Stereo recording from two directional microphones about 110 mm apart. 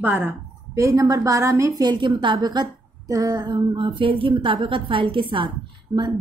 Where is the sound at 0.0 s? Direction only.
15° right (ahead or behind).